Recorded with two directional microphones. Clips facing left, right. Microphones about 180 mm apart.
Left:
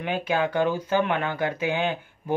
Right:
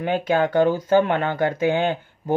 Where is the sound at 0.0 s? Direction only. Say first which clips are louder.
Right 5 dB; 50° right (ahead or behind).